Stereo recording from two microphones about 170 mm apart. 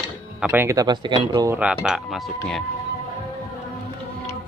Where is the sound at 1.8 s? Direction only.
Centre (ahead or behind).